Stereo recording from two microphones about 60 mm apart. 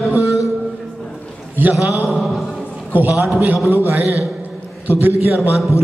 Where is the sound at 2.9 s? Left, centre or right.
Right.